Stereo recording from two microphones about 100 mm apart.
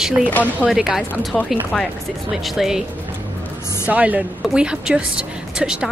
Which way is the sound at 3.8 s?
15° right (ahead or behind).